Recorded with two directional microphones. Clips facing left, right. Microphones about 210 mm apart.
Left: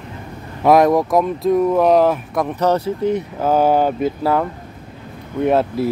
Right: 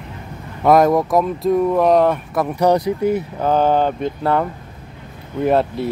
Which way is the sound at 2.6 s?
15° right (ahead or behind).